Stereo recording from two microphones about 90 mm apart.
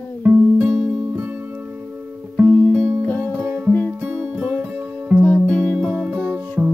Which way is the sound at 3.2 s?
20° right (ahead or behind).